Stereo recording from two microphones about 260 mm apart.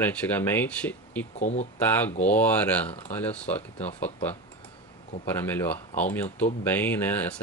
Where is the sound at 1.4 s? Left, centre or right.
Left.